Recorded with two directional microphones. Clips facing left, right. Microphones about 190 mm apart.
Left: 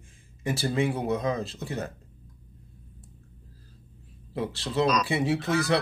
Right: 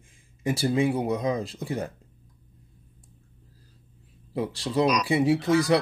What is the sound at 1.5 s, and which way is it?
Speech, 30° right (ahead or behind).